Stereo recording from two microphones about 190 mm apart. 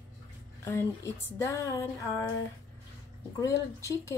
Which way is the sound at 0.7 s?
15° left (ahead or behind).